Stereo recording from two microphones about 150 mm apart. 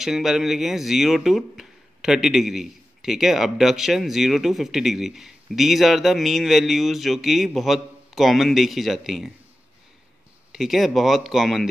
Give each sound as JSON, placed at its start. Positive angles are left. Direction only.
{"t": 0.0, "sound": "speech", "side_deg": 0}
{"t": 10.5, "sound": "speech", "side_deg": 0}